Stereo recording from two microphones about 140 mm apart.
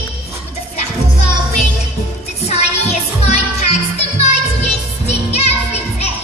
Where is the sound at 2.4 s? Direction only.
50° left (ahead or behind).